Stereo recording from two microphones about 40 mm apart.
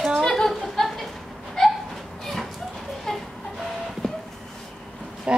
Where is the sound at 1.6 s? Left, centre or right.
Centre.